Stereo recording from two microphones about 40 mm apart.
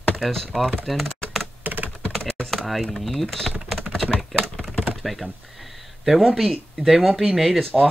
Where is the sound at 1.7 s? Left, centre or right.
Right.